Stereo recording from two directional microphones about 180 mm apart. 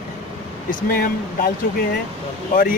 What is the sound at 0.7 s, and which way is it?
Speech, 50° left (ahead or behind).